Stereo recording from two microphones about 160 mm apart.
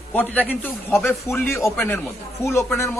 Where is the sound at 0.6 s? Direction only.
15° left (ahead or behind).